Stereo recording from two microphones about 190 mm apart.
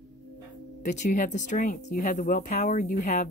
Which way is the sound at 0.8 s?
40° left (ahead or behind).